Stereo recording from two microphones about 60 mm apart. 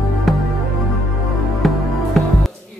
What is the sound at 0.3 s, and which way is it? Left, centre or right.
Music, centre.